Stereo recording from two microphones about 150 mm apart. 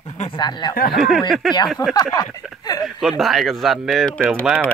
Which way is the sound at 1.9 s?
25° left (ahead or behind).